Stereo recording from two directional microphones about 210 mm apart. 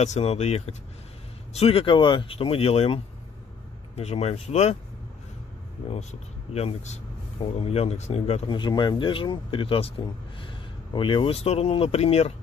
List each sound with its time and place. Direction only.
0.0 s speech: 30° left (ahead or behind)
6.5 s speech: 30° left (ahead or behind)